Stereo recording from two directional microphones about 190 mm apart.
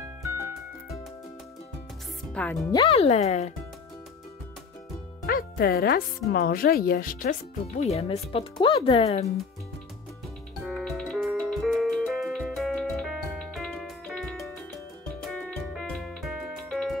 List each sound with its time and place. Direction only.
2.3 s speech: 10° left (ahead or behind)
2.9 s speech: 35° left (ahead or behind)
5.2 s speech: 50° left (ahead or behind); by 9.3 s 35° left (ahead or behind)
10.6 s music: centre (ahead or behind)